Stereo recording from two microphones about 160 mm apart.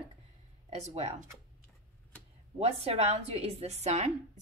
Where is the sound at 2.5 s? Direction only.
40° right (ahead or behind).